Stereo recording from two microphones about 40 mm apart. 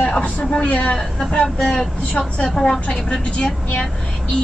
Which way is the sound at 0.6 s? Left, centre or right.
Left.